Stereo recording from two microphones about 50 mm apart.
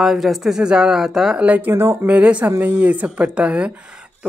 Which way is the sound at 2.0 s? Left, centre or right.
Right.